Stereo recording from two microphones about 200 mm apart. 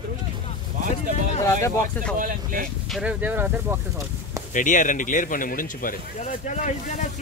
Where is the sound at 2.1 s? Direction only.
45° right (ahead or behind).